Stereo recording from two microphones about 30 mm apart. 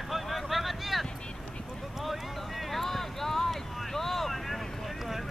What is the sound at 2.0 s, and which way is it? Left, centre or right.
Vehicle, centre.